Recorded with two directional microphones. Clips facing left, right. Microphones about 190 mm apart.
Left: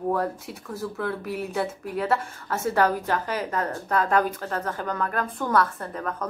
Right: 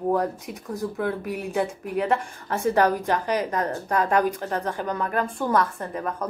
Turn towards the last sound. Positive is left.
turn(degrees=-10)  # may be behind; listen again after turning